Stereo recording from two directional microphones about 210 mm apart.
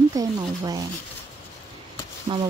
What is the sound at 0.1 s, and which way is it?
Speech, 20° right (ahead or behind).